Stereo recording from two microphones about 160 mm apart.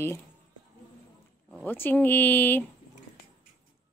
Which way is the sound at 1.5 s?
10° left (ahead or behind).